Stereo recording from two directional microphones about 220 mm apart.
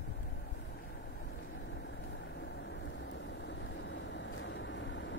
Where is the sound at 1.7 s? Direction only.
55° left (ahead or behind).